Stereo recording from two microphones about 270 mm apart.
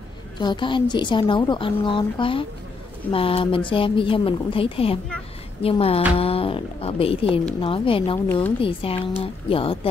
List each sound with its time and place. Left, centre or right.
0.4 s a woman's voice: centre